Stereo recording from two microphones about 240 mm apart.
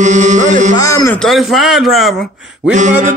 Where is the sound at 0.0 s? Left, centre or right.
Right.